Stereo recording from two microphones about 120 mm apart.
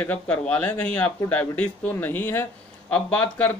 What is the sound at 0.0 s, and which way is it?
A man's voice, 10° left (ahead or behind).